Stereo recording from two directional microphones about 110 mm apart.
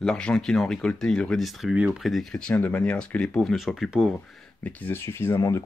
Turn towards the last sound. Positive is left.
turn(degrees=25)  # may be behind; listen again after turning